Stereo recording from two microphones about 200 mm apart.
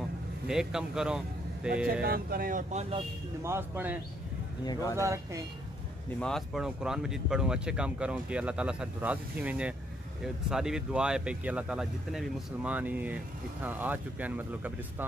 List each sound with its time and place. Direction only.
0.5 s speech: 5° right (ahead or behind)
1.9 s speech: 45° right (ahead or behind)
3.4 s speech: 10° right (ahead or behind)
6.1 s speech: 5° left (ahead or behind)